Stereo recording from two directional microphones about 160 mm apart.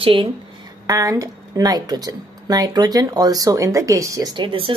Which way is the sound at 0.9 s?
20° right (ahead or behind).